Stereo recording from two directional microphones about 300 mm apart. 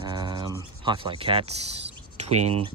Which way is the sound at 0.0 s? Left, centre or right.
Centre.